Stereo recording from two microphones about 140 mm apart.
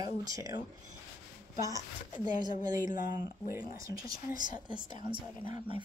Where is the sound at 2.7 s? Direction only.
75° left (ahead or behind).